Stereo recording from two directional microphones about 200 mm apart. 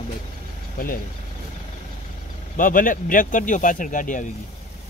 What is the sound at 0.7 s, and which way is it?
Speech, 45° left (ahead or behind).